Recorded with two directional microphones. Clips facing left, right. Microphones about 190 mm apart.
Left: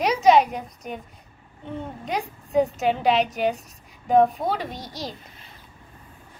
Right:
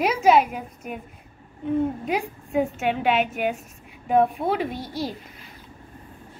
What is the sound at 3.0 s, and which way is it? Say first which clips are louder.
Speech: left 1 dB; 35° left (ahead or behind).